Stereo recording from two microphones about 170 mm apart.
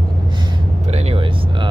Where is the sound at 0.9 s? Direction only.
35° right (ahead or behind).